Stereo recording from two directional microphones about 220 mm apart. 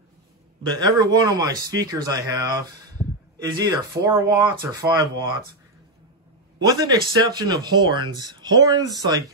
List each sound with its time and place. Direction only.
0.7 s speech: 20° right (ahead or behind)
3.0 s a sound: 25° left (ahead or behind)
3.4 s speech: 15° right (ahead or behind)
7.2 s speech: 20° right (ahead or behind)